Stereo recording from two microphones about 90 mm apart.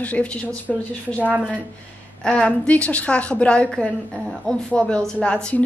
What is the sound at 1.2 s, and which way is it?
Speech, 10° right (ahead or behind).